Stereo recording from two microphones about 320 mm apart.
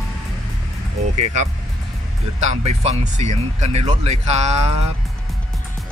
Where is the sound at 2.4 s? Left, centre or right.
Centre.